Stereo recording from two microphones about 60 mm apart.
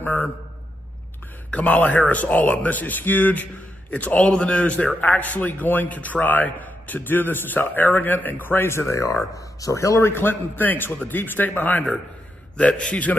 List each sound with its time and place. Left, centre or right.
0.0 s a sound: left
1.5 s a man's voice: left
12.5 s a man's voice: centre